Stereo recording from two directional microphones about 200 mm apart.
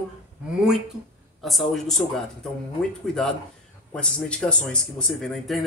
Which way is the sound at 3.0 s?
5° left (ahead or behind).